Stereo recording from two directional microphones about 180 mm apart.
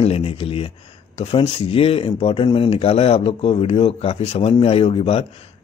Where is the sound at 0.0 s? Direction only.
35° left (ahead or behind).